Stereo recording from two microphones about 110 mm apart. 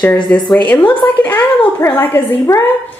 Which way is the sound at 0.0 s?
10° left (ahead or behind).